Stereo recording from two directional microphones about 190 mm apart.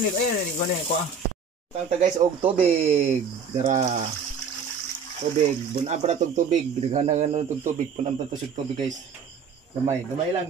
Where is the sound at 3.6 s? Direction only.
40° right (ahead or behind).